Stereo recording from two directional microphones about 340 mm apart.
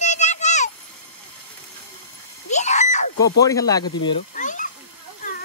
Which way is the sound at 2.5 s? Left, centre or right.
Left.